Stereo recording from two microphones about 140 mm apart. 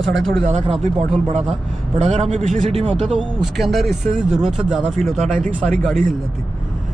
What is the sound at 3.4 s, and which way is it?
Speech, centre (ahead or behind).